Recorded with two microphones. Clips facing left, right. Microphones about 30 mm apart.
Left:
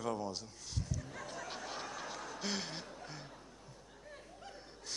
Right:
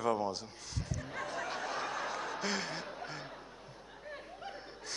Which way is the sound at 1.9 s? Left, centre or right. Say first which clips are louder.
Right 7 dB; centre.